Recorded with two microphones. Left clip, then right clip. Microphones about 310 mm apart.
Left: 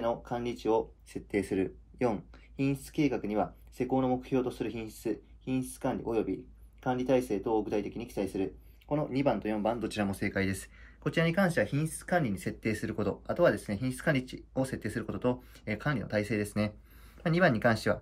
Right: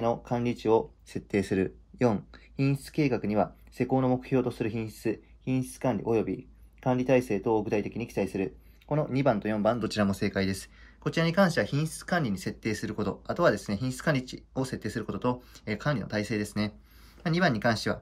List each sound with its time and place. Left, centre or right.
0.0 s speech: right
1.3 s speech: right
5.0 s speech: right
10.3 s speech: centre